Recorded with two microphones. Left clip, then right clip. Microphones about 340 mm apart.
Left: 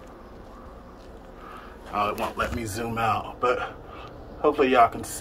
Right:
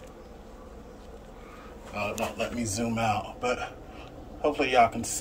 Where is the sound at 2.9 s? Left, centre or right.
Left.